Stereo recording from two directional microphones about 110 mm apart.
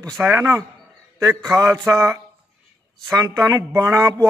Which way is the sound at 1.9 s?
30° right (ahead or behind).